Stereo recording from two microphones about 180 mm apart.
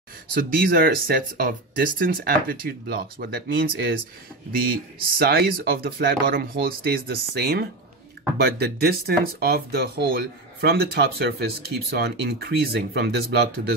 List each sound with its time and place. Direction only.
0.3 s speech: 55° right (ahead or behind)
5.2 s speech: 55° right (ahead or behind)